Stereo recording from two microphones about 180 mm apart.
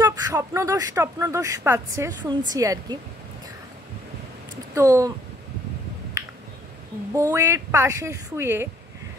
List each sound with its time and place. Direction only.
0.0 s speech: 20° right (ahead or behind)
4.7 s speech: 15° right (ahead or behind)
6.2 s finger snapping: 20° right (ahead or behind)
7.2 s speech: 15° right (ahead or behind)